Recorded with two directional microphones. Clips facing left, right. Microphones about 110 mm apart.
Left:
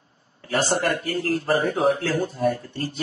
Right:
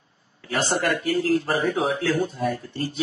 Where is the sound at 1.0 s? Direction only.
50° left (ahead or behind).